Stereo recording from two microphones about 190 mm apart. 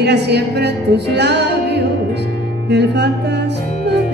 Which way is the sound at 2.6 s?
60° right (ahead or behind).